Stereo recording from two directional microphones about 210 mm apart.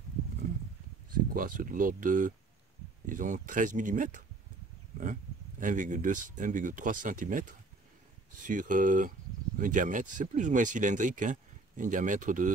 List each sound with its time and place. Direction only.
1.1 s speech: 40° right (ahead or behind)